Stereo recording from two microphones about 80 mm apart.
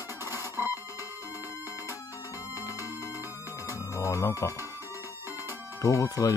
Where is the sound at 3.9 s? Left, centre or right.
Left.